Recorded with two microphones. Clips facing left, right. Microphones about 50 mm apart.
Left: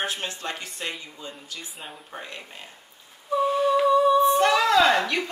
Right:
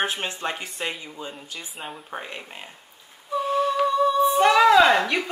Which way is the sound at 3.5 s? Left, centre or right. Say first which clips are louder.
Left 1 dB; centre.